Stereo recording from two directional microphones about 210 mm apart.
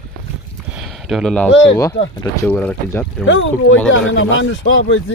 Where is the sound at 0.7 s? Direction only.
5° right (ahead or behind).